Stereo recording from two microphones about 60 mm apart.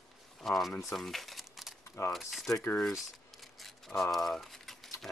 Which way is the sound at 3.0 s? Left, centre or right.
Centre.